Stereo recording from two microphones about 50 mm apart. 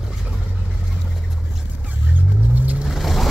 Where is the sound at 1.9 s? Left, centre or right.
Right.